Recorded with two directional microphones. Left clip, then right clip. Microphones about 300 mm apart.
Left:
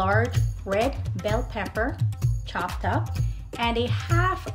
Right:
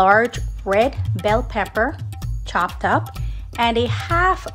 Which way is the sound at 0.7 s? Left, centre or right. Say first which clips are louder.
Right 8 dB; right.